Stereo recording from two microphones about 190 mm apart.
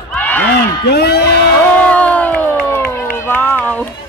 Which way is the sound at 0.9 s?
60° left (ahead or behind).